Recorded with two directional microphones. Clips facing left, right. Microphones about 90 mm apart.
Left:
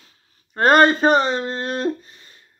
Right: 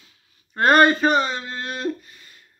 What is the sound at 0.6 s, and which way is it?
Speech, 35° left (ahead or behind).